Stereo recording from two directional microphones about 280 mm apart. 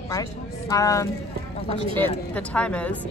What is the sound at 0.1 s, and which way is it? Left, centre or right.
Speech, centre.